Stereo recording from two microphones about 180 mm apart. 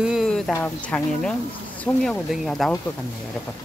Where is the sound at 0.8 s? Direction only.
5° left (ahead or behind).